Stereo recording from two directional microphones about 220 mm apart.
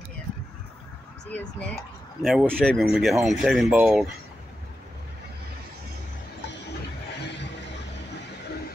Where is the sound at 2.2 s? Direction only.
Centre (ahead or behind).